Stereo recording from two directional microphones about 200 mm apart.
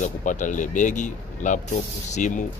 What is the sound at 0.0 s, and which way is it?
A man's voice, 40° left (ahead or behind).